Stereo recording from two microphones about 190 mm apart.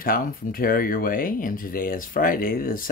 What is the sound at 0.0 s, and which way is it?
Speech, 50° left (ahead or behind).